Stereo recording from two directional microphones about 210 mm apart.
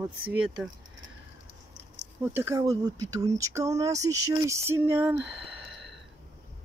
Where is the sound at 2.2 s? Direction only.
10° right (ahead or behind).